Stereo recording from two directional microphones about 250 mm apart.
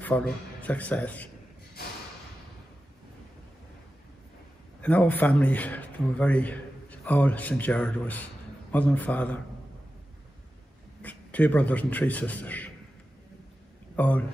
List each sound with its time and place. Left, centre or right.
0.0 s speech: centre
4.8 s a man's voice: centre
11.0 s a man's voice: centre
13.9 s a man's voice: centre